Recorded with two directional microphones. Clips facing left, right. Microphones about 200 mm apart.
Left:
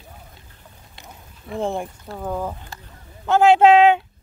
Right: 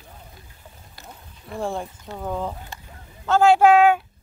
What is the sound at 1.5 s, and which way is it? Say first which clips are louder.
Speech: left 3 dB; 20° left (ahead or behind).